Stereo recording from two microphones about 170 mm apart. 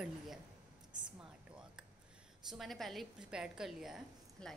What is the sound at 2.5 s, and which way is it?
A woman's voice, centre (ahead or behind).